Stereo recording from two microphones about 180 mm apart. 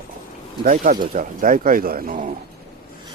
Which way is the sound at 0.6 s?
50° right (ahead or behind).